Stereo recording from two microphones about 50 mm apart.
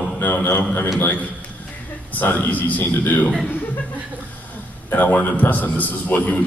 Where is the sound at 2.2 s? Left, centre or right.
Left.